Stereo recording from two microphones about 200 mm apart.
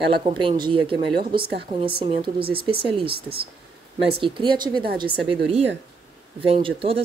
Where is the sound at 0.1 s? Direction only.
25° right (ahead or behind).